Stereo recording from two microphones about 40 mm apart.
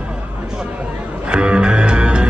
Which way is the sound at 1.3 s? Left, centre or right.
Right.